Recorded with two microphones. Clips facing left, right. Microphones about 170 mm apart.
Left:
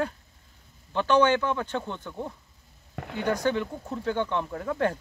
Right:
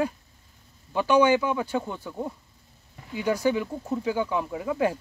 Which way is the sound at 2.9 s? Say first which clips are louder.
Left 1 dB; 65° left (ahead or behind).